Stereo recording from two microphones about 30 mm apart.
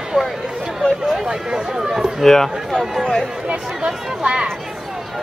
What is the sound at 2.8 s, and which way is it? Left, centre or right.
Speech, centre.